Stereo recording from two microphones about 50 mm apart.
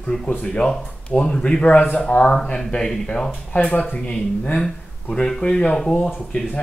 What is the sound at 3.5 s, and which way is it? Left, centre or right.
A man's voice, left.